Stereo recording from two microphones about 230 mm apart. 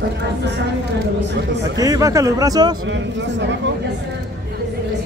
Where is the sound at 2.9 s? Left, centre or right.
Right.